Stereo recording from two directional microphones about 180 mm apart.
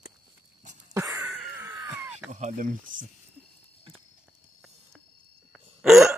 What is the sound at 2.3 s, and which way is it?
Speech, 45° right (ahead or behind).